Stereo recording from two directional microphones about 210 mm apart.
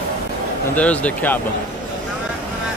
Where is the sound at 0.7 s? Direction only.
5° left (ahead or behind).